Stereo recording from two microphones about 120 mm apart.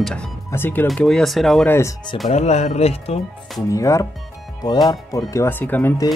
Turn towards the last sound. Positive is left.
turn(degrees=15)  # may be behind; listen again after turning